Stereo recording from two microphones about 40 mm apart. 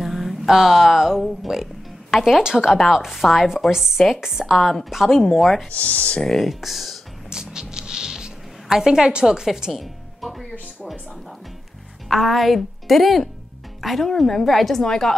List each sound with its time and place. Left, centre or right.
0.0 s mantra: centre
1.5 s speech: centre
2.4 s a woman's voice: centre
4.6 s a woman's voice: centre
5.7 s speech: left
6.2 s a woman's voice: centre
6.6 s a woman's voice: centre
7.2 s a sound: centre
12.1 s a woman's voice: centre